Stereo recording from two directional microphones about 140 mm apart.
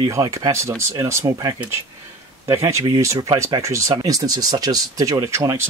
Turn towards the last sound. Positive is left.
turn(degrees=-20)  # may be behind; listen again after turning